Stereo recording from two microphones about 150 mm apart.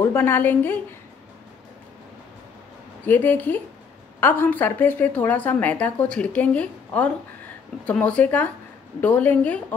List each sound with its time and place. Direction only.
0.0 s a woman's voice: 15° left (ahead or behind)
3.1 s a woman's voice: 10° left (ahead or behind)